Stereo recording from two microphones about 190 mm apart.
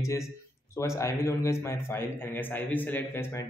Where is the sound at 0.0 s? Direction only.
15° left (ahead or behind).